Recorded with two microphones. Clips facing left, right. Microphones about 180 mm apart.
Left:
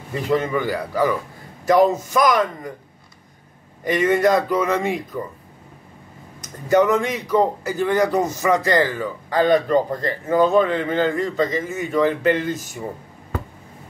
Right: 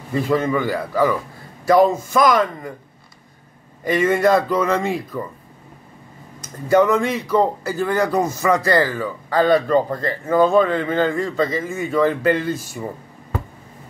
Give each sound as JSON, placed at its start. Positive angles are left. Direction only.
{"t": 0.3, "sound": "speech", "side_deg": 20}
{"t": 3.8, "sound": "speech", "side_deg": 15}
{"t": 6.7, "sound": "speech", "side_deg": 15}